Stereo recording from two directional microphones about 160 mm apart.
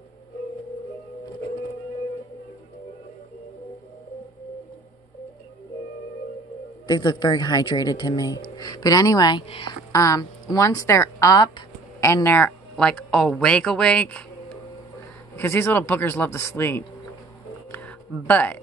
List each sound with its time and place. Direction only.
6.9 s a woman's voice: 25° left (ahead or behind)
9.9 s speech: 20° left (ahead or behind)
15.3 s speech: 15° left (ahead or behind)
17.6 s a sound: 10° left (ahead or behind)